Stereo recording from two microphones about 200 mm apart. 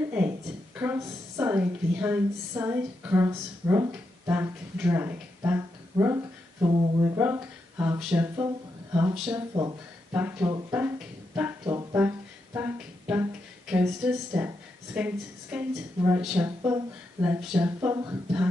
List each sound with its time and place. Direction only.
0.7 s a woman's voice: 10° right (ahead or behind)
8.5 s a sound: 15° right (ahead or behind)
9.1 s speech: centre (ahead or behind)
9.6 s a woman's voice: 15° right (ahead or behind)
11.3 s music: 15° right (ahead or behind)
15.0 s a woman's voice: 10° right (ahead or behind)